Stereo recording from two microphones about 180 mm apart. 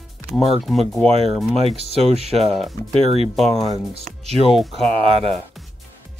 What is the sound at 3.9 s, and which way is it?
Speech, 35° right (ahead or behind).